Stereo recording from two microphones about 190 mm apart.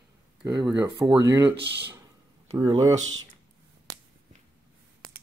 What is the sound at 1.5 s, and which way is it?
Speech, 60° right (ahead or behind).